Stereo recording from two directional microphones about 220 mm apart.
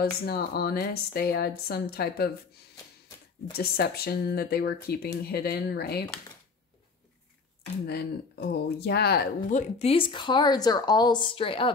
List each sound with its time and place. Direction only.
0.0 s speech: 45° left (ahead or behind)
3.5 s speech: 45° left (ahead or behind)
7.8 s speech: 50° left (ahead or behind); by 11.7 s 25° left (ahead or behind)